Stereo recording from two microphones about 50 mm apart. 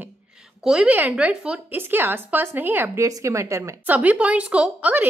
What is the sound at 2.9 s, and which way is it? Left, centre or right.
Speech, right.